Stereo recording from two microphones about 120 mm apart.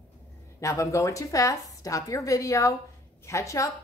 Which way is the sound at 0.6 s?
25° left (ahead or behind).